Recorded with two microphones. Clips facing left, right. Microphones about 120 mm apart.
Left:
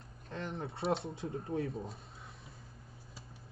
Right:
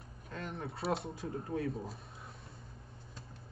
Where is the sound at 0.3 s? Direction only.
25° left (ahead or behind).